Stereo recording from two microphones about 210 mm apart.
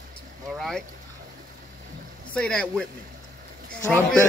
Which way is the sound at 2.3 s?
5° left (ahead or behind).